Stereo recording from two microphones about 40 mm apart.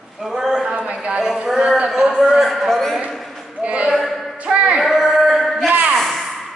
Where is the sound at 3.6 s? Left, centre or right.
Right.